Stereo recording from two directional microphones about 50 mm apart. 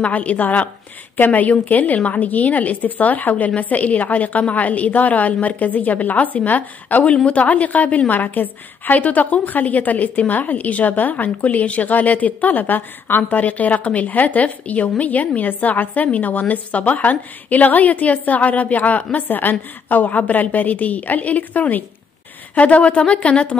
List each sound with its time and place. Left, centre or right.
0.0 s a woman's voice: left